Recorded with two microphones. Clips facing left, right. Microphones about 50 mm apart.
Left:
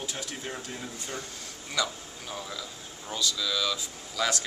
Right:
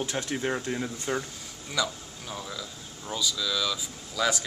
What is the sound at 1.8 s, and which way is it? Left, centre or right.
Speech, centre.